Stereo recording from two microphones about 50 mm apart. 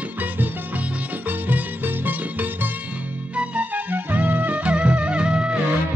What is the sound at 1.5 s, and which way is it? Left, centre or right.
Music, right.